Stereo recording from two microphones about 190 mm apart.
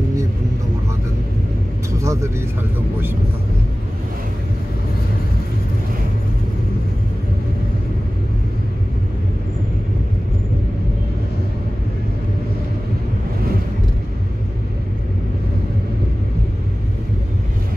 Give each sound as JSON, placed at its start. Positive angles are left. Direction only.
{"t": 2.0, "sound": "vehicle", "side_deg": -15}